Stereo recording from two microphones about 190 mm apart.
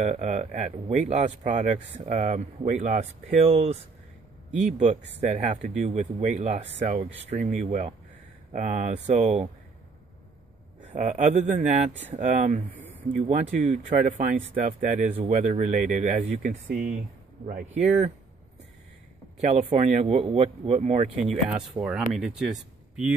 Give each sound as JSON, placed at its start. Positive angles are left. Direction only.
{"t": 0.0, "sound": "speech", "side_deg": -40}
{"t": 5.2, "sound": "speech", "side_deg": -40}
{"t": 10.9, "sound": "speech", "side_deg": -40}
{"t": 19.4, "sound": "speech", "side_deg": -35}
{"t": 21.7, "sound": "speech", "side_deg": -5}